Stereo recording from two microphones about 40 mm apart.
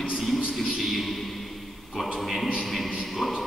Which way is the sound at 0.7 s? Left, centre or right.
Centre.